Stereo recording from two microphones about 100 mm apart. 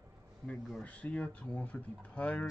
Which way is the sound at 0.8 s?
15° left (ahead or behind).